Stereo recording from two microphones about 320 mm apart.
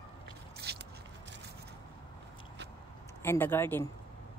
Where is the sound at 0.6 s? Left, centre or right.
Right.